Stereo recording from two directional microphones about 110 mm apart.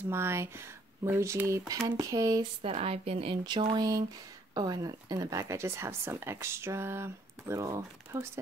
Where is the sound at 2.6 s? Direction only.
60° right (ahead or behind).